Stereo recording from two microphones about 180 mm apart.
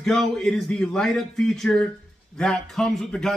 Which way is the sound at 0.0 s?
5° left (ahead or behind).